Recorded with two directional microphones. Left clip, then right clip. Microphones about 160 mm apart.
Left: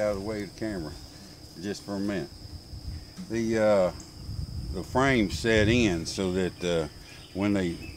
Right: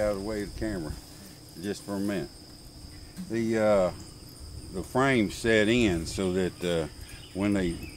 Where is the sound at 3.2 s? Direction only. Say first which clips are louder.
Left 1 dB; 5° left (ahead or behind).